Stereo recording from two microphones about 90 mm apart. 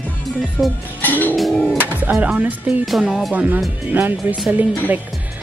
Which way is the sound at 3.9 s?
20° right (ahead or behind).